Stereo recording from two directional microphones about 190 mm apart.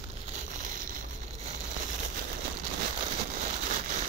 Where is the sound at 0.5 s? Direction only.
45° right (ahead or behind).